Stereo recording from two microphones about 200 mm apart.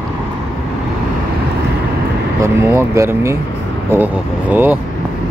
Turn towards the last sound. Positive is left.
turn(degrees=-10)  # may be behind; listen again after turning